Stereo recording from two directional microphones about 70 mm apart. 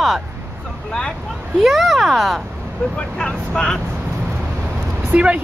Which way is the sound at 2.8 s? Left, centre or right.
Centre.